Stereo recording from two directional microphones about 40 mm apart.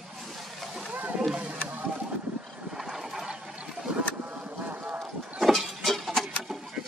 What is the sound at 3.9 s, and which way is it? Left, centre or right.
Boat, right.